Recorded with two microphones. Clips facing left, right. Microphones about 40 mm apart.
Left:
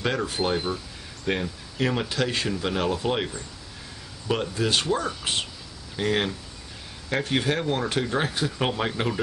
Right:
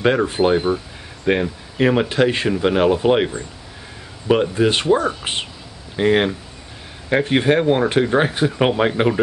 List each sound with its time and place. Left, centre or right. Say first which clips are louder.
0.0 s speech: right 9 dB; right